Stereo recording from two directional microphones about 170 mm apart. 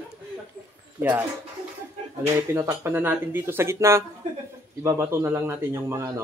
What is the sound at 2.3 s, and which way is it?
Speech, 15° right (ahead or behind).